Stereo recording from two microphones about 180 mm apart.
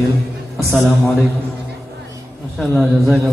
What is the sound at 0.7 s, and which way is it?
Speech, centre (ahead or behind).